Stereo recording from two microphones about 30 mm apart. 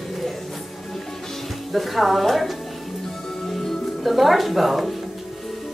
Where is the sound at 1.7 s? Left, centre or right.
Centre.